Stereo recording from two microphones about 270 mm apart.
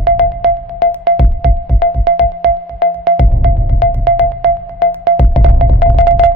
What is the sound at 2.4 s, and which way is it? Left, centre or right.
Music, centre.